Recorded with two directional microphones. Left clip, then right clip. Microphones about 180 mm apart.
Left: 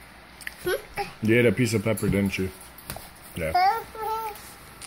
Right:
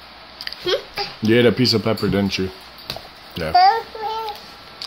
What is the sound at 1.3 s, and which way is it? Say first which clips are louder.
Speech: right 6 dB; 30° right (ahead or behind).